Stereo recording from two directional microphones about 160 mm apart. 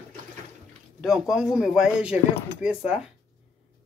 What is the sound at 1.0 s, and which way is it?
Speech, centre (ahead or behind).